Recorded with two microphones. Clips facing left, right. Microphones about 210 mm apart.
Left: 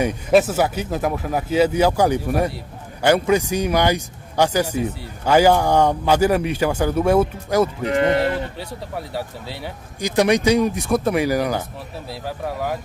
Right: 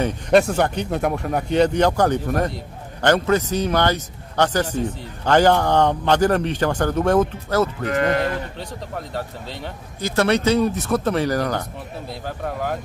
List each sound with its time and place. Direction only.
0.0 s a man's voice: 5° left (ahead or behind)
7.9 s speech: 25° left (ahead or behind)
8.5 s a man's voice: 10° left (ahead or behind)